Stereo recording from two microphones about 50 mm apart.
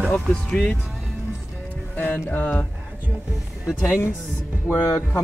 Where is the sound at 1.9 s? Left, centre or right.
Left.